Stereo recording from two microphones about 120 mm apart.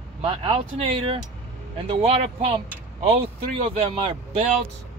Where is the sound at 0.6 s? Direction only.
50° right (ahead or behind).